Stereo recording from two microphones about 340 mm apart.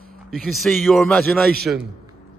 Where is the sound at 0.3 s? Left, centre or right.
Centre.